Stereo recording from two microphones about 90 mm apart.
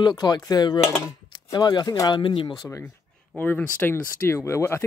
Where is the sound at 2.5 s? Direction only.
40° left (ahead or behind).